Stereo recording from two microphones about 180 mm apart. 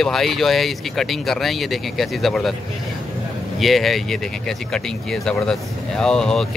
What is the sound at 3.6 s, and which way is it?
Speech, centre (ahead or behind).